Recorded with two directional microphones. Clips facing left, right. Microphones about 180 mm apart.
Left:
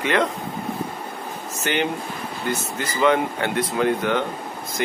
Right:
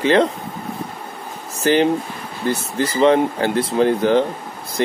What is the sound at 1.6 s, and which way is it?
Speech, 35° right (ahead or behind).